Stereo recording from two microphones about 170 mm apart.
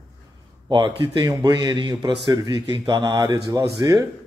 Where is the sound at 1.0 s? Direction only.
25° right (ahead or behind).